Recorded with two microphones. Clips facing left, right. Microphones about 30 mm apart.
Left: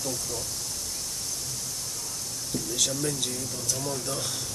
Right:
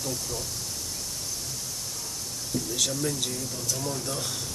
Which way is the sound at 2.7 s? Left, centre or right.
Centre.